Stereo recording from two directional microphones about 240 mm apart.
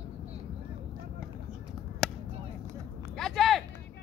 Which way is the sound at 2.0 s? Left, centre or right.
Centre.